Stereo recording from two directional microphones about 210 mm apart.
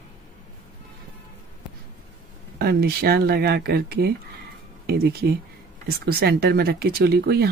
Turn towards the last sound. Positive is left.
turn(degrees=-50)  # may be behind; listen again after turning